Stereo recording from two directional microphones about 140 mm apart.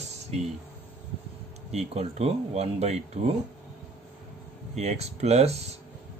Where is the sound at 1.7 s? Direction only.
50° right (ahead or behind).